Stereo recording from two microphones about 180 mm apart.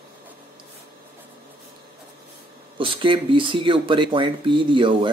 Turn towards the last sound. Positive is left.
turn(degrees=-25)  # may be behind; listen again after turning